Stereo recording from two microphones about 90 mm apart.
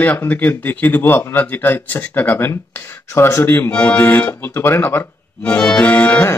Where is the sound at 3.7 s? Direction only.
15° left (ahead or behind).